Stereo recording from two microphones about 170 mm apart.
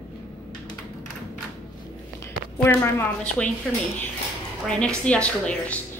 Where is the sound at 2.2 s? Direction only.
15° left (ahead or behind).